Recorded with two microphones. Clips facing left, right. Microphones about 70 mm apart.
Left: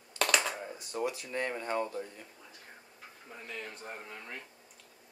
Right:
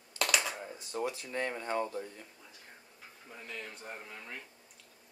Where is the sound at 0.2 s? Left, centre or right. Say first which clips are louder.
Left 2 dB; centre.